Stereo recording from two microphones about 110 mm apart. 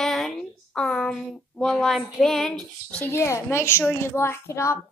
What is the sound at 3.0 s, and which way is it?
A woman's voice, 25° left (ahead or behind).